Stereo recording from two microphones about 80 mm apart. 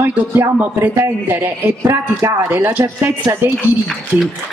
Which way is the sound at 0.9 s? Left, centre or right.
Right.